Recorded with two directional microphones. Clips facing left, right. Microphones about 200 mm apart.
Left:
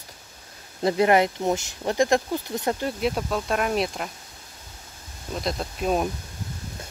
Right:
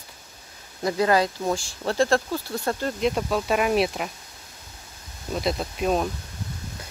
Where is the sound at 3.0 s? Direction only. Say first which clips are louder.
Right 2 dB; centre (ahead or behind).